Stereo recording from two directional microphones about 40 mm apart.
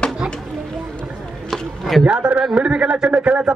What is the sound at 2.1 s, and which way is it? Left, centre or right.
A man's voice, right.